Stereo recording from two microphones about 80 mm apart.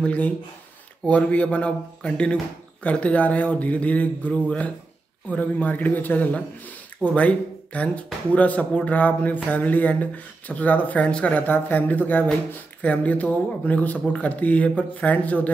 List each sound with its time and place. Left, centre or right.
0.0 s speech: centre